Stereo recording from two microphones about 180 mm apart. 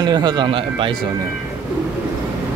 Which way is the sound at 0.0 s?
25° right (ahead or behind).